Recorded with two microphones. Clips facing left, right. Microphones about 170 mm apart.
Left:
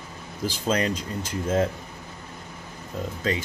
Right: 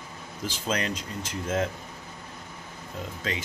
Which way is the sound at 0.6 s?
35° left (ahead or behind).